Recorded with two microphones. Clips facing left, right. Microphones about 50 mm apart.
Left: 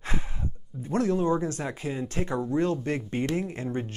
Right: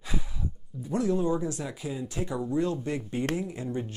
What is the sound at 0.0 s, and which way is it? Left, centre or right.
Speech, left.